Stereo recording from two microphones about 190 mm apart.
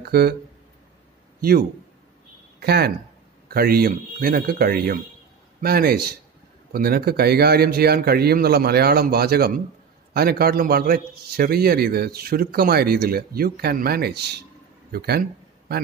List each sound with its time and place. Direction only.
0.0 s a man's voice: 55° right (ahead or behind)
1.4 s a man's voice: 50° right (ahead or behind)